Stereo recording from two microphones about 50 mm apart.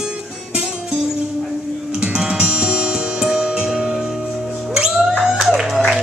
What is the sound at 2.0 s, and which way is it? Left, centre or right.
Music, centre.